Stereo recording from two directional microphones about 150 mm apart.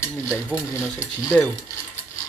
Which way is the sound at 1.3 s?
10° left (ahead or behind).